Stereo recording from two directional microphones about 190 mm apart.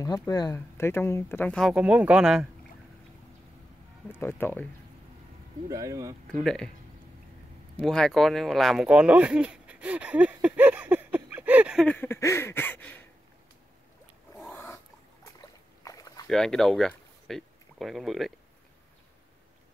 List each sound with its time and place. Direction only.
0.3 s speech: 20° left (ahead or behind); by 2.4 s 5° right (ahead or behind)
4.1 s speech: 10° left (ahead or behind)
5.7 s speech: 15° right (ahead or behind)
6.2 s speech: 5° left (ahead or behind)
7.7 s speech: 5° left (ahead or behind)
11.9 s speech: 10° left (ahead or behind)
14.5 s dog: 10° left (ahead or behind)
15.8 s a sound: 20° left (ahead or behind)
16.3 s speech: centre (ahead or behind)